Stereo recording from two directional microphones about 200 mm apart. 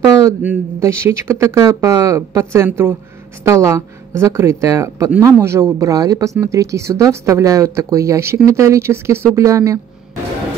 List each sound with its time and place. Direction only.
0.2 s speech: 10° right (ahead or behind)